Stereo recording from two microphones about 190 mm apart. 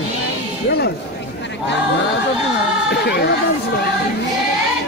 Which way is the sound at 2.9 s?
60° left (ahead or behind).